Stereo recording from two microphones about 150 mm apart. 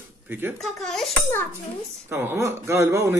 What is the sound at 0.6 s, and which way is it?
Dishes, centre (ahead or behind).